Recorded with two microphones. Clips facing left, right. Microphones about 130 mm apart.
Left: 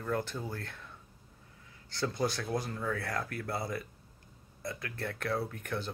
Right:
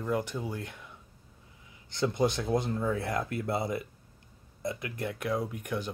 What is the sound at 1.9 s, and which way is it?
Speech, 20° right (ahead or behind).